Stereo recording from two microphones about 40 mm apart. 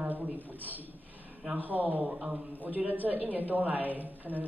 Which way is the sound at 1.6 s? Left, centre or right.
Right.